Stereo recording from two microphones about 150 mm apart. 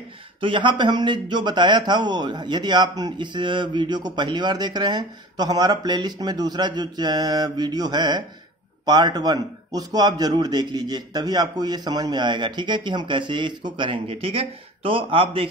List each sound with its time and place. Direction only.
0.4 s a man's voice: 35° right (ahead or behind)